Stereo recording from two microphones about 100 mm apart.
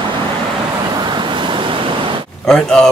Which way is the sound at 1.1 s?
55° right (ahead or behind).